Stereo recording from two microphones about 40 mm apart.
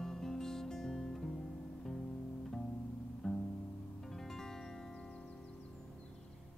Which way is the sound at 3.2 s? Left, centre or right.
Centre.